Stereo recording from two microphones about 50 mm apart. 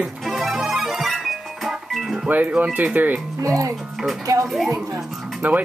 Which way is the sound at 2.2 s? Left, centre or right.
Right.